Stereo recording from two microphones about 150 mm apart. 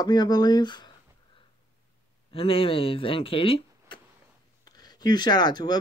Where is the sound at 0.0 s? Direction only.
25° left (ahead or behind).